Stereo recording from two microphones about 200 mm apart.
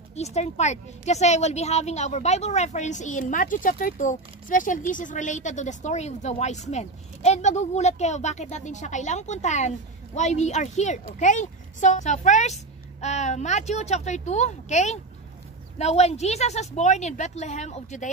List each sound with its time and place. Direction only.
0.1 s a woman's voice: 35° left (ahead or behind)